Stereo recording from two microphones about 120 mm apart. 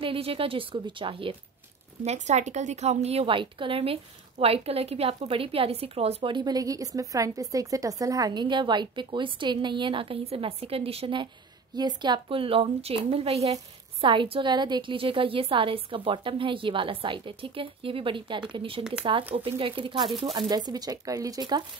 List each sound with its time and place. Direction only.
0.0 s a woman's voice: 50° right (ahead or behind)
2.0 s a woman's voice: 70° right (ahead or behind); by 11.2 s 50° right (ahead or behind)
11.7 s a woman's voice: 35° right (ahead or behind); by 13.6 s 60° right (ahead or behind)
14.0 s a woman's voice: 45° right (ahead or behind)
20.1 s speech: centre (ahead or behind)
20.3 s speech: 35° right (ahead or behind)